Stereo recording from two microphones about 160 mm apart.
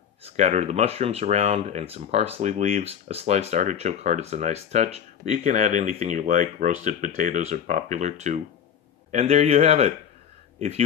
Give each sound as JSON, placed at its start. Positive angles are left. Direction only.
{"t": 0.4, "sound": "a man's voice", "side_deg": -45}